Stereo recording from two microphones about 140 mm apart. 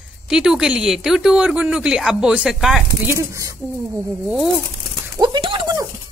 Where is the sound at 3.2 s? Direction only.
20° right (ahead or behind).